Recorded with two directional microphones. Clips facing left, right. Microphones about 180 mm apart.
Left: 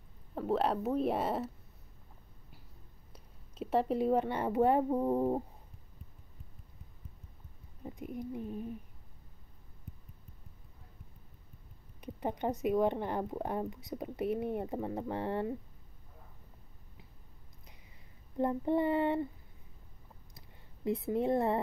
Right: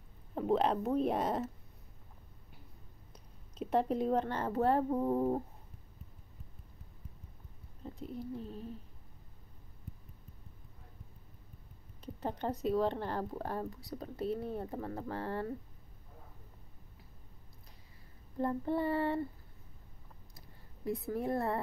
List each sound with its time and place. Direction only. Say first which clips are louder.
0.3 s speech: right 1 dB; centre (ahead or behind)
3.1 s speech: even; 5° left (ahead or behind)
7.8 s speech: left 2 dB; 15° left (ahead or behind)
12.0 s speech: left 3 dB; 15° left (ahead or behind)
18.4 s child singing: left 3 dB; 20° left (ahead or behind)
20.3 s a sound: right 1 dB; 25° left (ahead or behind)